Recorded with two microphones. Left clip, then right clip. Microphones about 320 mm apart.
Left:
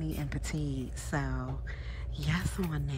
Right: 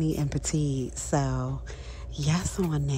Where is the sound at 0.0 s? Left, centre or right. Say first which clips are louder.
Right 9 dB; centre.